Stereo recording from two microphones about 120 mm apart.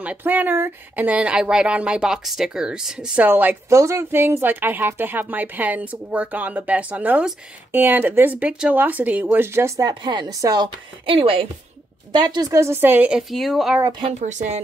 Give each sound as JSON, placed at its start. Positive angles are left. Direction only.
{"t": 0.0, "sound": "a woman's voice", "side_deg": -15}
{"t": 11.1, "sound": "a woman's voice", "side_deg": -50}
{"t": 12.1, "sound": "a woman's voice", "side_deg": -40}
{"t": 13.3, "sound": "speech", "side_deg": 0}
{"t": 14.2, "sound": "a woman's voice", "side_deg": -80}